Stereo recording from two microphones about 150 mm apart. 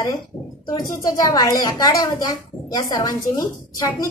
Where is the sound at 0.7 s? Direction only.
25° left (ahead or behind).